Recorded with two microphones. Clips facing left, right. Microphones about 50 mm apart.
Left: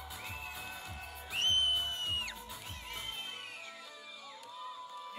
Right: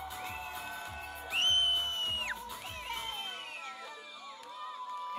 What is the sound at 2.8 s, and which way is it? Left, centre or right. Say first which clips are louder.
Crowd: right 5 dB; right.